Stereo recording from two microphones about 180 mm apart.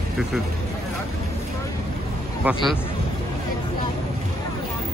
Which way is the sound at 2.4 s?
10° right (ahead or behind).